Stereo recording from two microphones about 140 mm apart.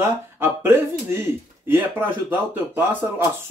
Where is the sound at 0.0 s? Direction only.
15° right (ahead or behind).